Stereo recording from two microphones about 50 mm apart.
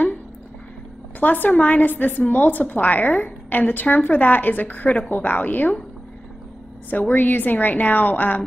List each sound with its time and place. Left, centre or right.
1.2 s speech: left
6.9 s speech: left